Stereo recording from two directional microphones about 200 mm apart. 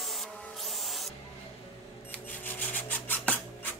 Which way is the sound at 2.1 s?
10° left (ahead or behind).